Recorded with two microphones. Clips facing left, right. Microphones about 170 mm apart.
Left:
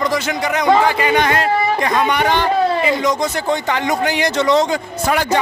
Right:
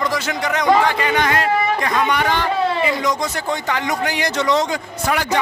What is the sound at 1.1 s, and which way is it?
A man's voice, 25° left (ahead or behind).